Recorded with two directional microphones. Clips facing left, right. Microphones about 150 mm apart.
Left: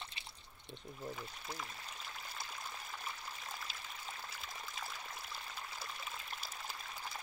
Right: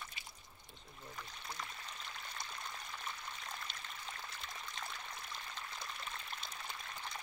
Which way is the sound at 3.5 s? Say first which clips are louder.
Even; 5° left (ahead or behind).